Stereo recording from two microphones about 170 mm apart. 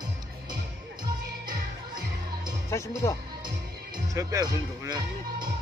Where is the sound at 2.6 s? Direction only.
15° left (ahead or behind).